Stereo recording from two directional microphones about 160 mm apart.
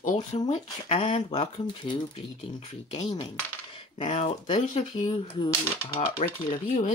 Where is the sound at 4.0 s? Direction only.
40° left (ahead or behind).